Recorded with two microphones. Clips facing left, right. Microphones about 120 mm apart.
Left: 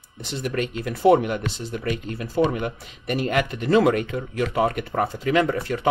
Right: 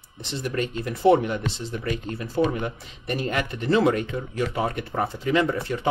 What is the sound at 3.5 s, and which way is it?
Speech, 65° left (ahead or behind).